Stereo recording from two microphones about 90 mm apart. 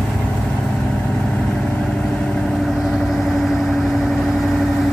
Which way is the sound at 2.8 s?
Centre (ahead or behind).